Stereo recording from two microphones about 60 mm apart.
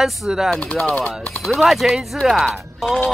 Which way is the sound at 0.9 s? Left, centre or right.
Centre.